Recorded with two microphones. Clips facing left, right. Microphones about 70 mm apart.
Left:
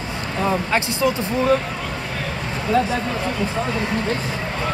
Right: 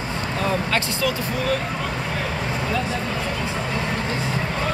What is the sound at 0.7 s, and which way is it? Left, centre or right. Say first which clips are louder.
Speech: left 3 dB; left.